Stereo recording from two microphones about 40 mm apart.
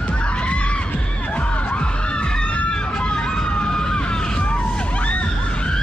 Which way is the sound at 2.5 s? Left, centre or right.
Left.